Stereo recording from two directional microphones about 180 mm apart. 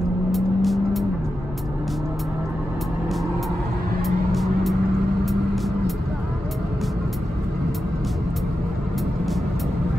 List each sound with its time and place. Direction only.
0.3 s vehicle: centre (ahead or behind)
4.0 s vehicle: centre (ahead or behind)